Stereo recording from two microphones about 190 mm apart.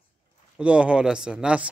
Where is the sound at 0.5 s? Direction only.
5° right (ahead or behind).